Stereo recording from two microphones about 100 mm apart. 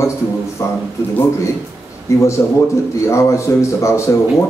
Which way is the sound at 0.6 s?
35° left (ahead or behind).